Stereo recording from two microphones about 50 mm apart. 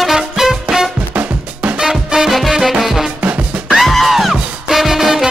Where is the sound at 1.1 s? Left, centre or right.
Right.